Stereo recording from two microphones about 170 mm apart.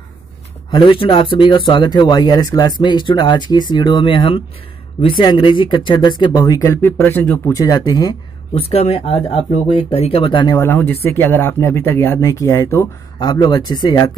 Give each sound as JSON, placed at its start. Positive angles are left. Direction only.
{"t": 0.7, "sound": "speech", "side_deg": 30}
{"t": 7.5, "sound": "speech", "side_deg": 20}
{"t": 11.1, "sound": "speech", "side_deg": 15}